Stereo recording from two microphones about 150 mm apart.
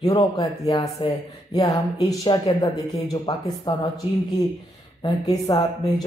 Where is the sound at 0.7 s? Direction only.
25° left (ahead or behind).